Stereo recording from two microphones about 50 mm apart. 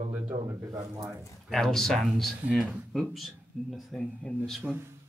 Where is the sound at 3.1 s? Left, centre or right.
Centre.